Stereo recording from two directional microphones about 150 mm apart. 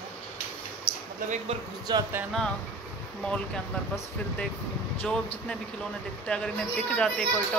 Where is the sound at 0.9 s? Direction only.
35° right (ahead or behind).